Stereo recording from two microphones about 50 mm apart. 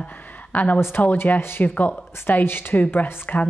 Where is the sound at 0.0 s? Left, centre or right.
Left.